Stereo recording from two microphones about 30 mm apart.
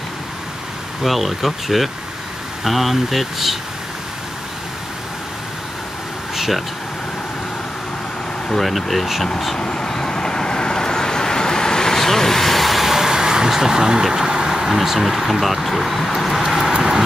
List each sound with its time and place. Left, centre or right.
1.0 s speech: centre
6.3 s a sound: centre
8.5 s speech: centre
9.6 s vehicle: left; by 14.7 s right
14.7 s speech: centre